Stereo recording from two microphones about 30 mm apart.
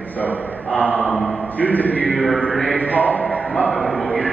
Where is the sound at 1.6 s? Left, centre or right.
Left.